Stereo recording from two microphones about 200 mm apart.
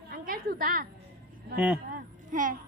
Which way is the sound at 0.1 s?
45° right (ahead or behind).